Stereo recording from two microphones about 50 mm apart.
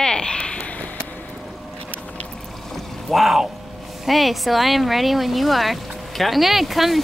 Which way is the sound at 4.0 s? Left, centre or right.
Centre.